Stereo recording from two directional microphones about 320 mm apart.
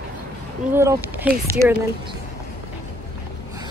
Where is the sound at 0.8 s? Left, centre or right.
Centre.